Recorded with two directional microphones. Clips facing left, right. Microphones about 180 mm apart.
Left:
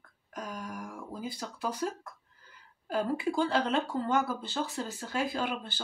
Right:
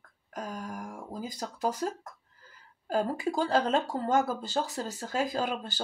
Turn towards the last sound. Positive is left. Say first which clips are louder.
# right 2 dB
turn(degrees=-40)  # may be behind; listen again after turning